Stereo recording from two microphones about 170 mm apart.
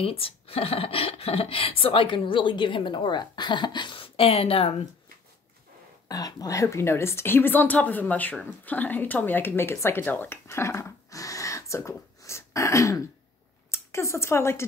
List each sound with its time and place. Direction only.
0.0 s speech: 35° left (ahead or behind)
6.0 s speech: 20° left (ahead or behind)
12.2 s throat clearing: 15° left (ahead or behind)
13.7 s speech: 15° left (ahead or behind)